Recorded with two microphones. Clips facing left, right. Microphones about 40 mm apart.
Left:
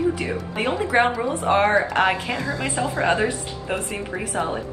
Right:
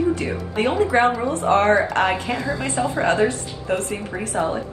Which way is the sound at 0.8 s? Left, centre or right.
Centre.